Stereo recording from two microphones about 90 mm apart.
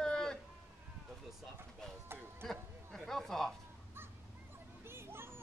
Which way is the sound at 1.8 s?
5° left (ahead or behind).